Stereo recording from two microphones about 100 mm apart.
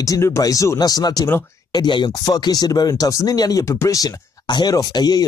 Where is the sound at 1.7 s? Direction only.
50° left (ahead or behind).